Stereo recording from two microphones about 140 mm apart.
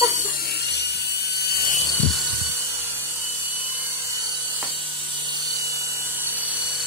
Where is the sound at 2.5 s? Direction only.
15° right (ahead or behind).